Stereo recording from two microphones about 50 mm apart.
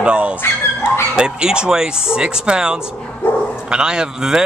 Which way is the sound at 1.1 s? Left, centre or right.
Centre.